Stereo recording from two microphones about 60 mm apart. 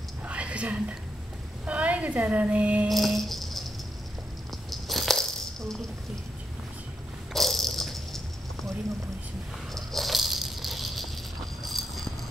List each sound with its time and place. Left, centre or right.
0.2 s whispering: centre
1.7 s a woman's voice: right
2.9 s rattle: centre
4.6 s a sound: centre
7.3 s dog: centre
9.8 s rattle: centre